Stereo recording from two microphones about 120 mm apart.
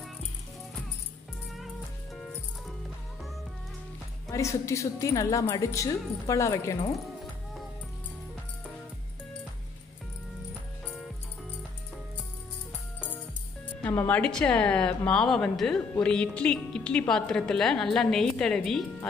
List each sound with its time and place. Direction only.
4.3 s speech: 25° left (ahead or behind)
13.8 s a woman's voice: 15° left (ahead or behind)